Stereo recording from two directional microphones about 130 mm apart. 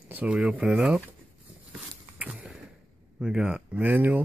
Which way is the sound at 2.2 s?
10° right (ahead or behind).